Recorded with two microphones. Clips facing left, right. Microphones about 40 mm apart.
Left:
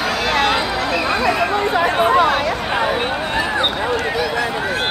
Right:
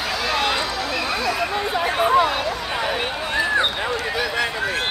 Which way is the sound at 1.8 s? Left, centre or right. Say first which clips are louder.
Left 2 dB; left.